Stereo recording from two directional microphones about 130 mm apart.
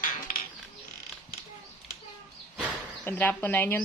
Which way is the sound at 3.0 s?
15° left (ahead or behind).